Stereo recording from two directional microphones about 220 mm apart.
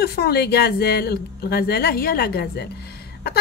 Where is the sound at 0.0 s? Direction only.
45° left (ahead or behind).